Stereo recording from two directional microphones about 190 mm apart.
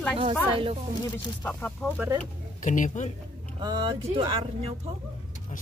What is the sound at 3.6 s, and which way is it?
Speech, 25° right (ahead or behind).